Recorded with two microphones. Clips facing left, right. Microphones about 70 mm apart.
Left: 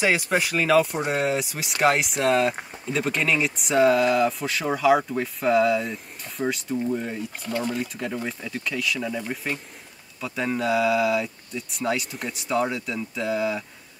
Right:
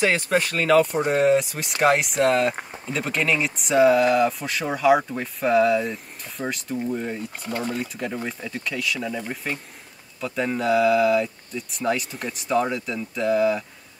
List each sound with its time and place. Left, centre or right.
0.0 s speech: centre
7.4 s speech: right
7.7 s speech: centre